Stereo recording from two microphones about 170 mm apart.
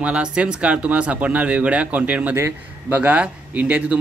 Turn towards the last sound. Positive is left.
turn(degrees=-10)  # may be behind; listen again after turning